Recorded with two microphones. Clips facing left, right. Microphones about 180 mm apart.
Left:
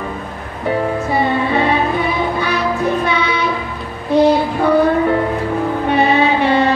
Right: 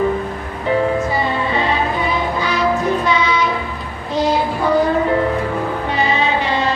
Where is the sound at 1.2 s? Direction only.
60° left (ahead or behind).